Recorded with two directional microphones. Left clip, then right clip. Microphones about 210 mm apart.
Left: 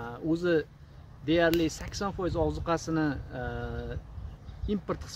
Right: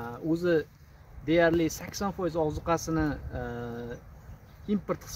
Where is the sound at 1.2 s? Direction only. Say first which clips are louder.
Right 1 dB; 20° left (ahead or behind).